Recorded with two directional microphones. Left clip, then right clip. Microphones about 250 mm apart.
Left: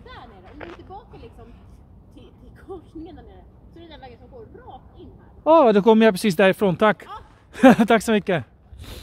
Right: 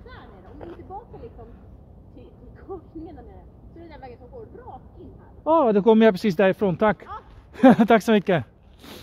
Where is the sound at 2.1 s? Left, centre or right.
Left.